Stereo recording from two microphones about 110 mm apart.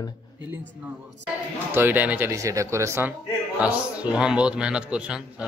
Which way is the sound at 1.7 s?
15° right (ahead or behind).